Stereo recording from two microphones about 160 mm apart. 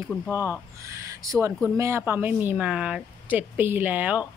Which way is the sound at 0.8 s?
20° right (ahead or behind).